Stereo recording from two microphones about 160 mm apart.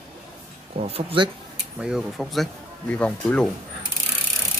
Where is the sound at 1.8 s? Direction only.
Centre (ahead or behind).